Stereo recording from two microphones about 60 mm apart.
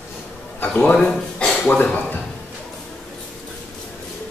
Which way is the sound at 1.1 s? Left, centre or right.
Centre.